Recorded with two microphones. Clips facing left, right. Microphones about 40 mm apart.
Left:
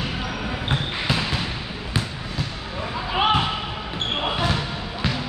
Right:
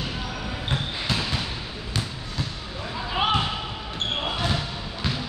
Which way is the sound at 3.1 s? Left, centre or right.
Centre.